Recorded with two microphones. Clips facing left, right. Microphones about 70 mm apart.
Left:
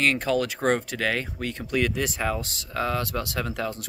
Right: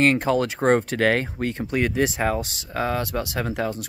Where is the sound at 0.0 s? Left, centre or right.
Right.